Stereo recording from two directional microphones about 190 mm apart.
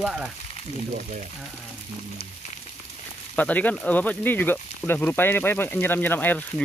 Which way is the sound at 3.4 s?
10° left (ahead or behind).